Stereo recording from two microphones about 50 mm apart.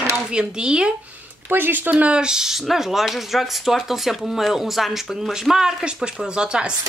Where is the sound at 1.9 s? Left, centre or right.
Right.